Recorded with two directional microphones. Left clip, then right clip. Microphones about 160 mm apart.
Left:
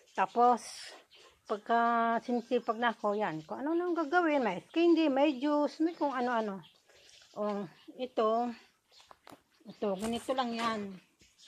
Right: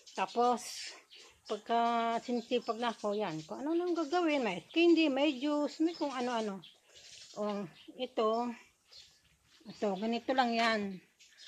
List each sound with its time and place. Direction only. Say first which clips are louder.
0.1 s speech: left 4 dB; centre (ahead or behind)
9.9 s speech: even; 30° right (ahead or behind)
10.3 s speech: right 4 dB; 50° right (ahead or behind)